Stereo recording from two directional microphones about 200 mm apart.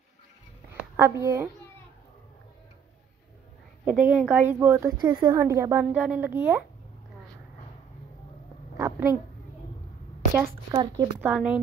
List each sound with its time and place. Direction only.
0.7 s a woman's voice: 15° right (ahead or behind)
3.8 s a woman's voice: 10° right (ahead or behind)
8.7 s a sound: 15° right (ahead or behind)
10.3 s a woman's voice: 15° right (ahead or behind)
11.1 s speech: 5° right (ahead or behind)